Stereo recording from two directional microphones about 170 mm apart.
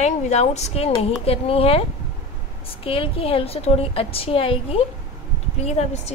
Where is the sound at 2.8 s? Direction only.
35° left (ahead or behind).